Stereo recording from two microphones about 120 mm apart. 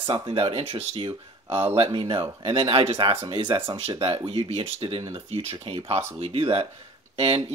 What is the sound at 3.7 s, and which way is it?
Speech, 60° right (ahead or behind).